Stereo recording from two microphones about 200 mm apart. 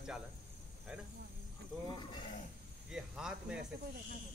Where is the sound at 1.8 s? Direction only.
20° left (ahead or behind).